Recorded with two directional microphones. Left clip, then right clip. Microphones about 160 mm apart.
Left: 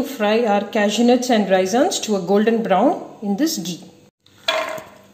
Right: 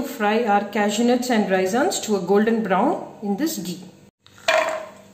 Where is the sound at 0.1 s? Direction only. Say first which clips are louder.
Left 1 dB; 35° left (ahead or behind).